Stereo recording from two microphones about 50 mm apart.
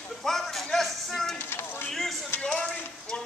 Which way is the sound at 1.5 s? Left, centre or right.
Left.